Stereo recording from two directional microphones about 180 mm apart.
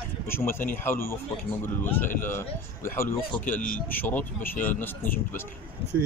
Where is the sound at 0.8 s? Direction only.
15° left (ahead or behind).